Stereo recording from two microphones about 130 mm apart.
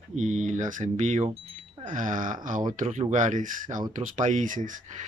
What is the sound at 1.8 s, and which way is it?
Speech, 90° right.